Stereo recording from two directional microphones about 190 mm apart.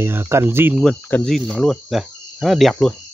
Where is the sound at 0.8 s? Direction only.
5° left (ahead or behind).